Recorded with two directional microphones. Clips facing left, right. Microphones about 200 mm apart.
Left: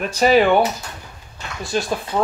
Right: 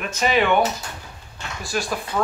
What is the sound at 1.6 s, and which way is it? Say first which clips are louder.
Speech: left 4 dB; 20° left (ahead or behind).